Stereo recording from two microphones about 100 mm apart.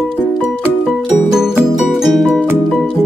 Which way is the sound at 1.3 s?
5° right (ahead or behind).